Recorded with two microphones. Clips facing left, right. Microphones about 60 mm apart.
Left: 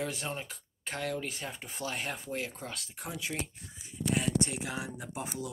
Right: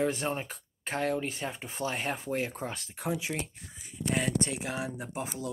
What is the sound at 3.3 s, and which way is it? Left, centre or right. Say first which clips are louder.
Speech: right 2 dB; right.